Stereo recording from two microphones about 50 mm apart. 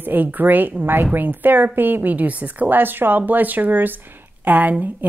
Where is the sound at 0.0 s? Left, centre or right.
Right.